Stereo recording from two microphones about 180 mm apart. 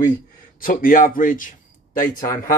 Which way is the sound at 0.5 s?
50° left (ahead or behind).